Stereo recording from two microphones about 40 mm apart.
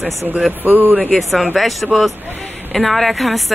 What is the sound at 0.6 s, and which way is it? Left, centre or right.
Speech, right.